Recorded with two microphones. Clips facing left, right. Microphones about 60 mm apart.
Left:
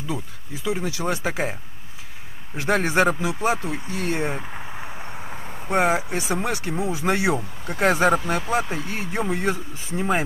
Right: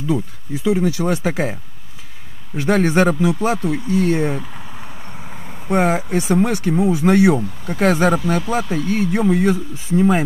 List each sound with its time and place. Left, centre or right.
0.7 s speech: centre